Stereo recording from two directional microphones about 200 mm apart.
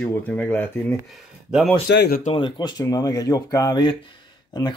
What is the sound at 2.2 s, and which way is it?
Speech, 25° left (ahead or behind).